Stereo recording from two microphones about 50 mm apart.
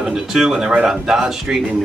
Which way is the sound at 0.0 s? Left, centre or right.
Centre.